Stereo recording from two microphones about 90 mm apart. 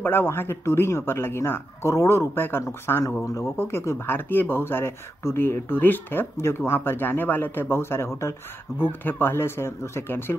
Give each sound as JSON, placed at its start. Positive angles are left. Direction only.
{"t": 0.0, "sound": "speech", "side_deg": 25}